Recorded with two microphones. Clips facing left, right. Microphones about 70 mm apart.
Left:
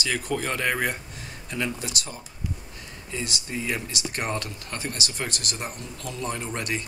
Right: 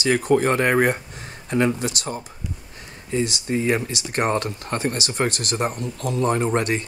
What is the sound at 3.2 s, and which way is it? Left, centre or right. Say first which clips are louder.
Speech: right 9 dB; right.